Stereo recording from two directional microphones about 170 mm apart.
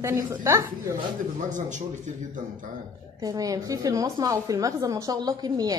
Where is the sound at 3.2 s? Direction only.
20° right (ahead or behind).